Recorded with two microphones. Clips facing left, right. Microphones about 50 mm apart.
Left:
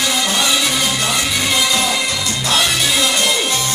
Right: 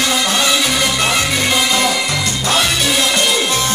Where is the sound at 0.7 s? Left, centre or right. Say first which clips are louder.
Right 2 dB; right.